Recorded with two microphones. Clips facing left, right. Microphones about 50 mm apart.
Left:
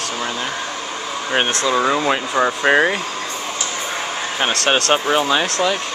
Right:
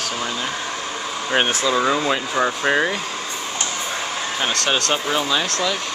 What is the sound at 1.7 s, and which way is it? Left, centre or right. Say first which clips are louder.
Speech: left 4 dB; centre.